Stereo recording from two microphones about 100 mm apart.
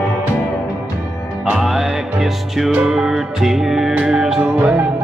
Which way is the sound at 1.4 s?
5° right (ahead or behind).